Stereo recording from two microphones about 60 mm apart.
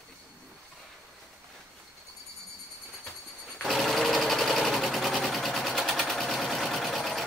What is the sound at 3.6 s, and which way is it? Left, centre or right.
Sewing machine, centre.